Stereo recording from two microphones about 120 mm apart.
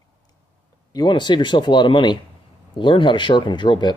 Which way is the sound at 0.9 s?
40° left (ahead or behind).